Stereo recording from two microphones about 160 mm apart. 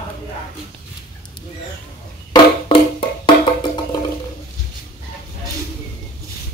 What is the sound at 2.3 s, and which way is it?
Music, 35° left (ahead or behind).